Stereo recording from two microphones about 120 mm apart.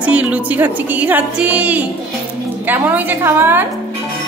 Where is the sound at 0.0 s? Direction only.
10° right (ahead or behind).